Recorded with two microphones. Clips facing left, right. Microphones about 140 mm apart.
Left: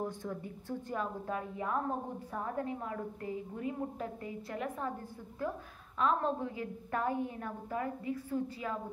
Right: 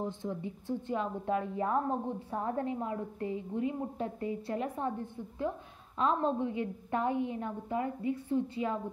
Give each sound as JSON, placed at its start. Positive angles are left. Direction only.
{"t": 0.0, "sound": "a woman's voice", "side_deg": -20}